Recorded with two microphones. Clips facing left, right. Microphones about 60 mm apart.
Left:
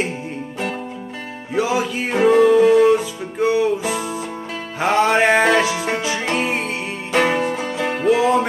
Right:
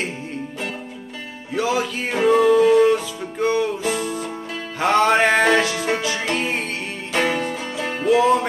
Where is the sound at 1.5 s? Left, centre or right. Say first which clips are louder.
Left 2 dB; centre.